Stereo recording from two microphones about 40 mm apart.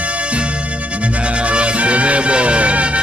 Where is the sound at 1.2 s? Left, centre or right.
Right.